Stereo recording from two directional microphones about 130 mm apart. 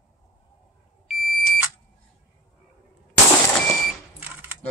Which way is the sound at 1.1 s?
Centre (ahead or behind).